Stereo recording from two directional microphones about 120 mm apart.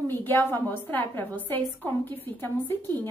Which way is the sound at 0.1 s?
15° left (ahead or behind).